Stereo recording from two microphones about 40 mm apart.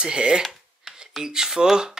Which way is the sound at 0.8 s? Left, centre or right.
Centre.